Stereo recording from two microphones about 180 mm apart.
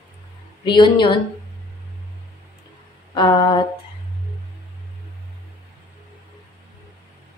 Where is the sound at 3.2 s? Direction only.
25° left (ahead or behind).